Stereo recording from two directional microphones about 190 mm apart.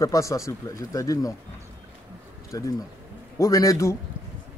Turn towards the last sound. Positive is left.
turn(degrees=15)  # may be behind; listen again after turning